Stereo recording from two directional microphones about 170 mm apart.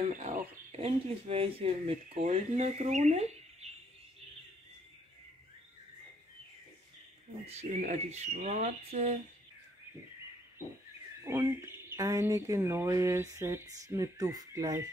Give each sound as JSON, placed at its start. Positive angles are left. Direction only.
{"t": 0.0, "sound": "speech", "side_deg": -45}
{"t": 7.4, "sound": "speech", "side_deg": -45}
{"t": 11.2, "sound": "speech", "side_deg": -15}